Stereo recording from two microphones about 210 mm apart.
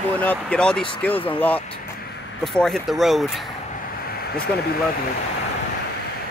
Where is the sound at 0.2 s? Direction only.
5° left (ahead or behind).